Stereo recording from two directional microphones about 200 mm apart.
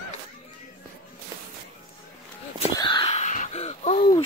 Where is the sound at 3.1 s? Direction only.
35° left (ahead or behind).